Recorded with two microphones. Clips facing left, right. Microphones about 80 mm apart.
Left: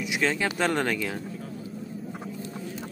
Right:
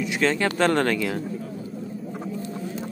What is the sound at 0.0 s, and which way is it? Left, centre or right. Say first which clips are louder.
Speech: right 4 dB; centre.